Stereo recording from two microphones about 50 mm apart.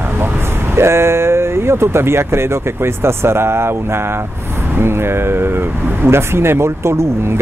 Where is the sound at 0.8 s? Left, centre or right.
Right.